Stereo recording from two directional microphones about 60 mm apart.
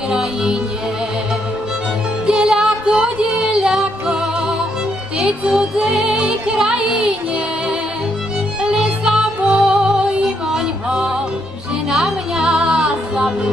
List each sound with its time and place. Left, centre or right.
0.1 s music: centre
2.2 s music: centre
8.6 s music: centre